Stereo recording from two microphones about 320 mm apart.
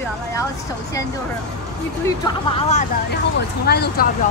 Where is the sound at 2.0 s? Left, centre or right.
Centre; by 4.1 s left.